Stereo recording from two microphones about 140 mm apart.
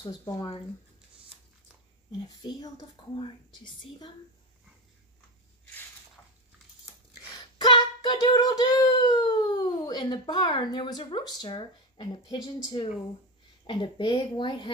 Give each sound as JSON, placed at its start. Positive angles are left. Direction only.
{"t": 0.0, "sound": "speech", "side_deg": 30}
{"t": 2.2, "sound": "a woman's voice", "side_deg": 25}
{"t": 7.2, "sound": "a sound", "side_deg": 30}
{"t": 13.7, "sound": "a woman's voice", "side_deg": 35}